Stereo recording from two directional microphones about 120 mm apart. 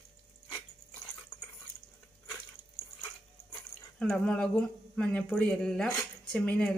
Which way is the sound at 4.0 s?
5° left (ahead or behind).